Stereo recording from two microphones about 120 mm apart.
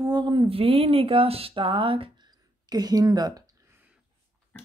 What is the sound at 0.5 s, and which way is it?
Speech, 50° right (ahead or behind).